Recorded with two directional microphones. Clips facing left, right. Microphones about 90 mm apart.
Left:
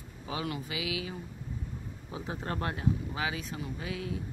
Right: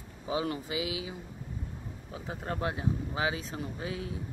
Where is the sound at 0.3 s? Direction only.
25° right (ahead or behind).